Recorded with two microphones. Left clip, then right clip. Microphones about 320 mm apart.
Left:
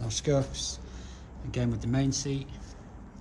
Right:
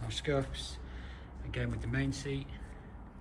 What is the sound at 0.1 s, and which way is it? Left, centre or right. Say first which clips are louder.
Speech: left 5 dB; centre.